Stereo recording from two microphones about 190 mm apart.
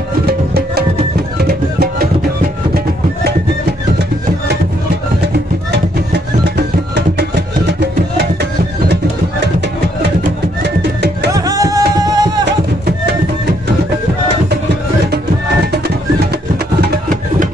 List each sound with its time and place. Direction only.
0.3 s music: 55° right (ahead or behind)
7.0 s music: 60° right (ahead or behind)
11.3 s music: 20° right (ahead or behind)
16.8 s music: 45° right (ahead or behind)